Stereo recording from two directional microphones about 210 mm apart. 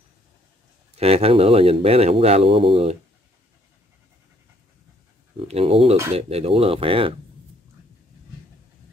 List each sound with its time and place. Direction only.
0.9 s speech: 30° right (ahead or behind)
5.4 s speech: 30° right (ahead or behind)